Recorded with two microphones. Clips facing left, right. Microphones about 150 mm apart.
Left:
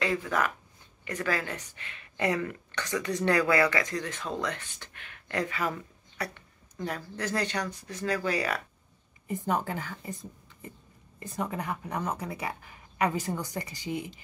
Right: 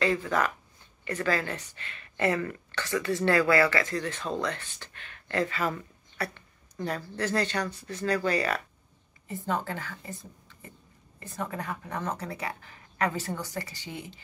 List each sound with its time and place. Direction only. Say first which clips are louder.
0.0 s a woman's voice: right 2 dB; 10° left (ahead or behind)
11.3 s a woman's voice: left 2 dB; 15° left (ahead or behind)